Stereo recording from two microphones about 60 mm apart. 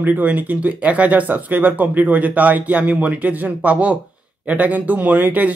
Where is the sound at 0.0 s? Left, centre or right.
Right.